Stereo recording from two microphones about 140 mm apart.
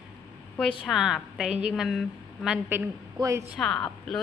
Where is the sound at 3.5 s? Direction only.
5° left (ahead or behind).